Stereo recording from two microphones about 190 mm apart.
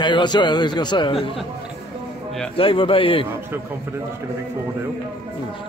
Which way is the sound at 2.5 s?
30° left (ahead or behind).